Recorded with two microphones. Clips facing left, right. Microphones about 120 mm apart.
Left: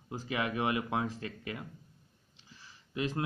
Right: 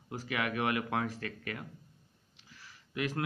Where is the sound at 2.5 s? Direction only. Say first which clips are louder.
Left 1 dB; 25° left (ahead or behind).